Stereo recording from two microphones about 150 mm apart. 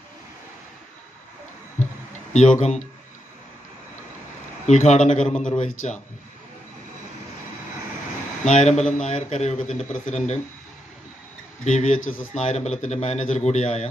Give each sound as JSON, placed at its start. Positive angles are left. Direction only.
{"t": 2.3, "sound": "a man's voice", "side_deg": 50}
{"t": 4.6, "sound": "a man's voice", "side_deg": 50}
{"t": 5.3, "sound": "a man's voice", "side_deg": 5}
{"t": 5.6, "sound": "speech", "side_deg": 55}
{"t": 8.5, "sound": "a man's voice", "side_deg": 50}
{"t": 11.6, "sound": "a man's voice", "side_deg": 50}